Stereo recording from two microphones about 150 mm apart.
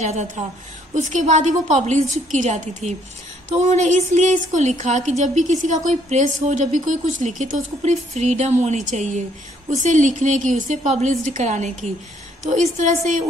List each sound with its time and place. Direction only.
0.0 s a woman's voice: 50° right (ahead or behind)